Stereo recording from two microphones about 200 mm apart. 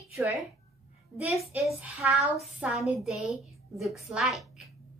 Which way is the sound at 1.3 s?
Centre (ahead or behind).